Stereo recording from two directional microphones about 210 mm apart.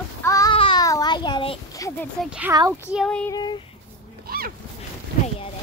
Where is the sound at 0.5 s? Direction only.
20° left (ahead or behind).